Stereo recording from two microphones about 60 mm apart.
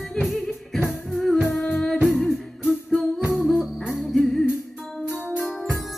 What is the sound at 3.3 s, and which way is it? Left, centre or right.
Music, centre.